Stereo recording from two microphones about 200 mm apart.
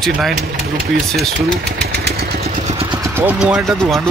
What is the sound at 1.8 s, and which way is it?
Vehicle, 55° right (ahead or behind).